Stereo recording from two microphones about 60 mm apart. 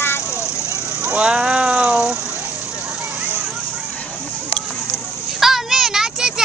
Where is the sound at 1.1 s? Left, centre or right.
Centre.